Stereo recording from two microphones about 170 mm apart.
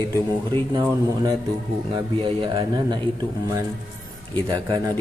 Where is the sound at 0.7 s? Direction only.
25° right (ahead or behind).